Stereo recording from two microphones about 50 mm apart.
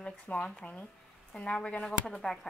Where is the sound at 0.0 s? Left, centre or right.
Left.